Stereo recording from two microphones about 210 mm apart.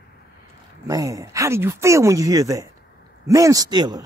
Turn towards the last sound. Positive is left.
turn(degrees=-20)  # may be behind; listen again after turning